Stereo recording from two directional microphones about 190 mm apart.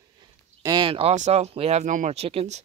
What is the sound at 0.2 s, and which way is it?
Speech, 20° right (ahead or behind).